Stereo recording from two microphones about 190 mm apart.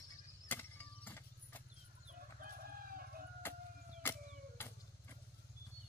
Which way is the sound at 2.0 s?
50° right (ahead or behind).